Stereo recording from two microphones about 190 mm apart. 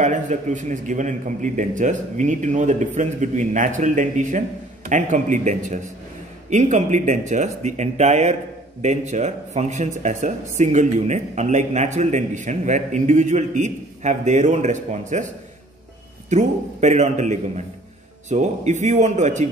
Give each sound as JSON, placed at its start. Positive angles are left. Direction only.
{"t": 0.0, "sound": "speech", "side_deg": -40}
{"t": 16.3, "sound": "speech", "side_deg": -40}